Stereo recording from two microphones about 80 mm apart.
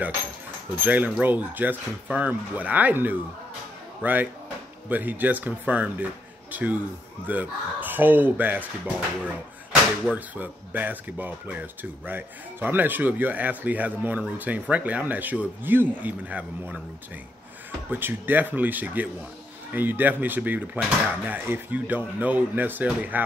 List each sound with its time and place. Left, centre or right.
0.7 s speech: right
17.9 s speech: right